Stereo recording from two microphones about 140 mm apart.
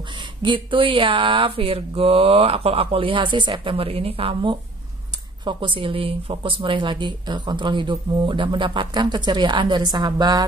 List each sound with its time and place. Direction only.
0.4 s a woman's voice: 35° right (ahead or behind)